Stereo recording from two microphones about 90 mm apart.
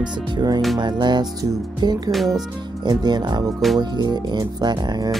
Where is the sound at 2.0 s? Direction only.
Centre (ahead or behind).